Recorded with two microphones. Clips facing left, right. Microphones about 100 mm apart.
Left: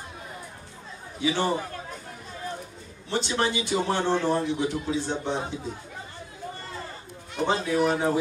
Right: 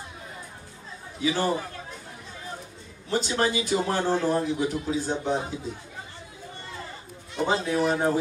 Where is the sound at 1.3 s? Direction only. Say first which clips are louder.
Even; 20° left (ahead or behind).